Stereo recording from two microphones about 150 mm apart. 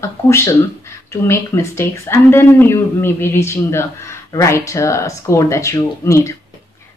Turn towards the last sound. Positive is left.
turn(degrees=20)  # may be behind; listen again after turning